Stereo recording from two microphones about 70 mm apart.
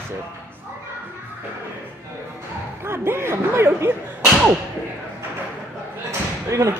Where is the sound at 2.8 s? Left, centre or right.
Right.